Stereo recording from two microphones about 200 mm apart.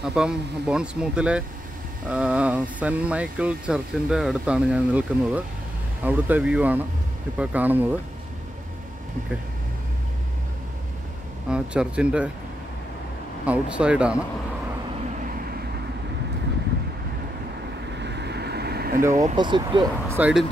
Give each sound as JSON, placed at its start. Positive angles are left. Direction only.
{"t": 0.0, "sound": "speech", "side_deg": -5}
{"t": 11.5, "sound": "speech", "side_deg": -5}
{"t": 13.5, "sound": "speech", "side_deg": -5}
{"t": 17.9, "sound": "vehicle", "side_deg": -60}
{"t": 19.3, "sound": "speech", "side_deg": -20}
{"t": 20.2, "sound": "speech", "side_deg": -5}